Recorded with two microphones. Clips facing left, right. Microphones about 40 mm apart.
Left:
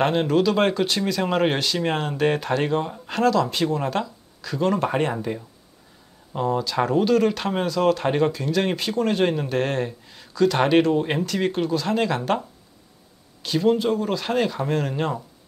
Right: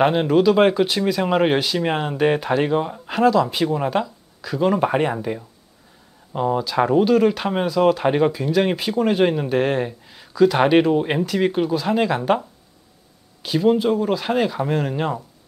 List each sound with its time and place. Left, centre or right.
0.0 s speech: centre